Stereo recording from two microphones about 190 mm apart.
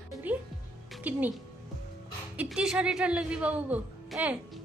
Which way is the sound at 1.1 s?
10° right (ahead or behind).